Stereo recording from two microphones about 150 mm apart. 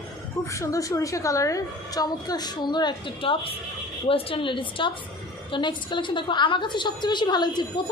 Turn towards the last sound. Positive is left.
turn(degrees=30)  # may be behind; listen again after turning